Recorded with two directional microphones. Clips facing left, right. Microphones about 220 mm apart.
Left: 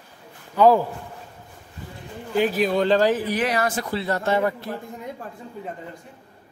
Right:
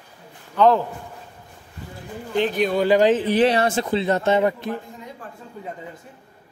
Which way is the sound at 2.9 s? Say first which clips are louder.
Right 3 dB; 20° right (ahead or behind).